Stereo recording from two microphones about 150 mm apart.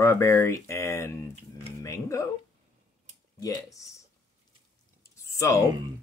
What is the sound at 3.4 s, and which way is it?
Speech, 25° left (ahead or behind).